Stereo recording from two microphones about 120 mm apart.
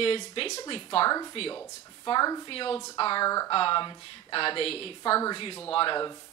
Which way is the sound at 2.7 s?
40° left (ahead or behind).